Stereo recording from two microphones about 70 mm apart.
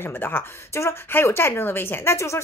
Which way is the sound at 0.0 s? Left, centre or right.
Left.